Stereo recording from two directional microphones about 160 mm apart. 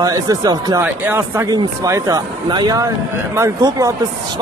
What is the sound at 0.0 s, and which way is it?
Speech, 25° right (ahead or behind).